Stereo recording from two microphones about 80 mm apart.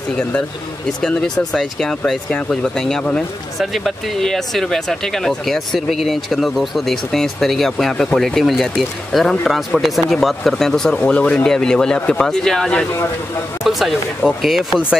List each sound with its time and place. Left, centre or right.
0.8 s speech: centre
13.7 s speech: centre